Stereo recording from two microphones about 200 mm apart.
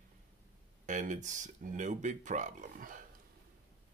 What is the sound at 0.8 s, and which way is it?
Speech, 40° right (ahead or behind).